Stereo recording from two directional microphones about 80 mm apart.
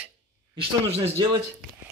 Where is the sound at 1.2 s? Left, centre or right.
Right.